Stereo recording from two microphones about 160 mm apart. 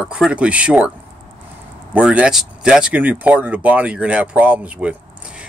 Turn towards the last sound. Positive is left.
turn(degrees=-10)  # may be behind; listen again after turning